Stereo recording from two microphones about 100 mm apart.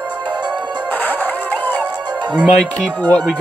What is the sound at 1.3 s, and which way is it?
Music, 15° left (ahead or behind).